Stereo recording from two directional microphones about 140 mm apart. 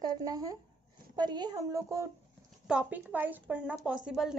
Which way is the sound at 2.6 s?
10° right (ahead or behind).